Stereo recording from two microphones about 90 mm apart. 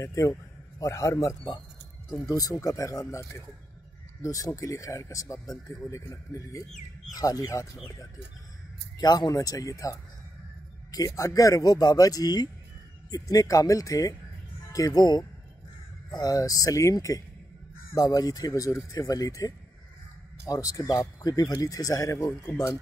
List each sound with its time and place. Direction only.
0.0 s a man's voice: 35° left (ahead or behind)
8.9 s speech: 50° left (ahead or behind)